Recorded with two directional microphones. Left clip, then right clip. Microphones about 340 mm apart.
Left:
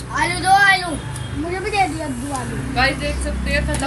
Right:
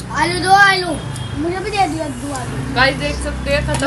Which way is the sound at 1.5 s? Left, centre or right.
Left.